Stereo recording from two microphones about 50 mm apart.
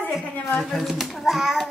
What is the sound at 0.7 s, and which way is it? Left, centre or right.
Speech, centre.